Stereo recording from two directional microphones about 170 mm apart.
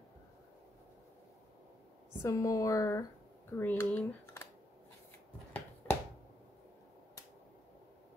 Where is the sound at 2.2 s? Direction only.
20° left (ahead or behind).